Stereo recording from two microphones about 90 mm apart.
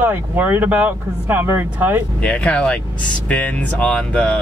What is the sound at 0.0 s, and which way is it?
Speech, 20° right (ahead or behind).